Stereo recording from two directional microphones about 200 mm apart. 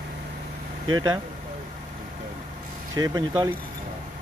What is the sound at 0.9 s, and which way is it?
Speech, 15° right (ahead or behind).